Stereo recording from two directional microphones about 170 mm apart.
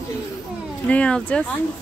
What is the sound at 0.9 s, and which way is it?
Speech, 5° left (ahead or behind).